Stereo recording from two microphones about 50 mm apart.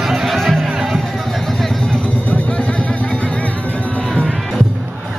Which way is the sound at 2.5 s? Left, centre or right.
Left.